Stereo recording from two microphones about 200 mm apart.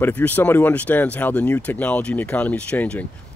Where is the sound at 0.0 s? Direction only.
10° left (ahead or behind).